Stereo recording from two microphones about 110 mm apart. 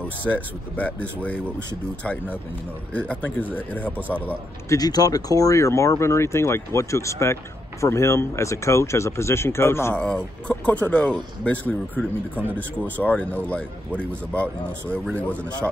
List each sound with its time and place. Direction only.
0.2 s speech: 15° left (ahead or behind)
2.9 s speech: 10° left (ahead or behind)
4.6 s speech: 35° left (ahead or behind)
9.9 s speech: 10° left (ahead or behind)